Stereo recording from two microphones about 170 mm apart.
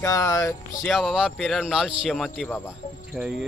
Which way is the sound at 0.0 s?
20° left (ahead or behind).